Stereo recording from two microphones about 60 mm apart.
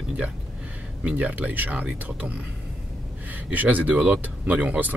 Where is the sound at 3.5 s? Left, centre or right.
Right.